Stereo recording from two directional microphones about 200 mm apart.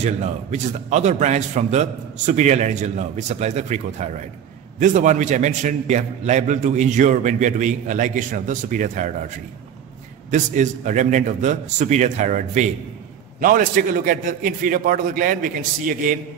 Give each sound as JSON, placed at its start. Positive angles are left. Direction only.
{"t": 0.0, "sound": "a man's voice", "side_deg": -35}
{"t": 10.3, "sound": "a man's voice", "side_deg": -40}